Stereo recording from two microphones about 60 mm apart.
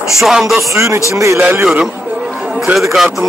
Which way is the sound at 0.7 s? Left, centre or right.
Right.